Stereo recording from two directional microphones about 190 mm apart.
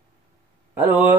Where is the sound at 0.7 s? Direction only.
10° right (ahead or behind).